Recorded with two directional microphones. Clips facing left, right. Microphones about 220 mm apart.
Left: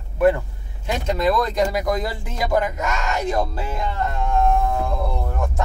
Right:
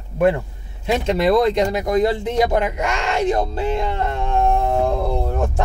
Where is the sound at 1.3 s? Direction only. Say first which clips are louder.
Right 4 dB; 25° right (ahead or behind).